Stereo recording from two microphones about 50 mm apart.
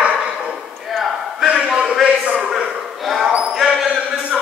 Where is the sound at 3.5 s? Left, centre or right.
Centre.